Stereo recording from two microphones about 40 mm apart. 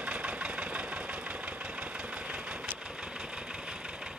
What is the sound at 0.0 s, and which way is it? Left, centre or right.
Engine, right.